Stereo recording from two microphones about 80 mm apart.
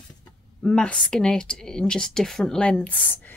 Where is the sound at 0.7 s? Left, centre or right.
Centre.